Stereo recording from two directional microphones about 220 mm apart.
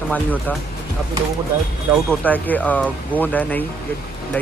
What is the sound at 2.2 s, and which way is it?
Speech, 5° left (ahead or behind).